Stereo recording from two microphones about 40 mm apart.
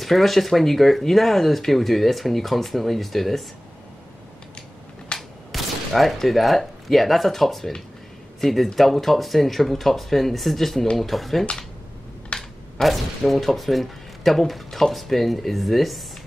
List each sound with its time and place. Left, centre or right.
0.0 s speech: centre
5.1 s gunshot: left
5.5 s speech: centre
12.3 s a sound: centre
12.8 s speech: centre